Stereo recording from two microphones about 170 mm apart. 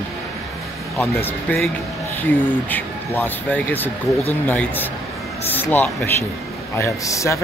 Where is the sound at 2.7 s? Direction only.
10° left (ahead or behind).